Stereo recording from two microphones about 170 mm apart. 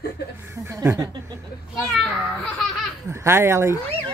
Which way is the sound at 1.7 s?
5° left (ahead or behind).